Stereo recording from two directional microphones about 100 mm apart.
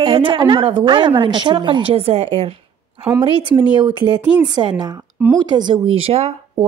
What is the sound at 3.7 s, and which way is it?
Speech, 50° right (ahead or behind).